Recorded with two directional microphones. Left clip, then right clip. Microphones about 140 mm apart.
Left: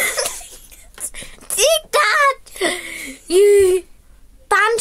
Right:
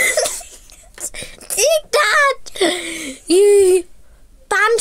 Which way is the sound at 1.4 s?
15° right (ahead or behind).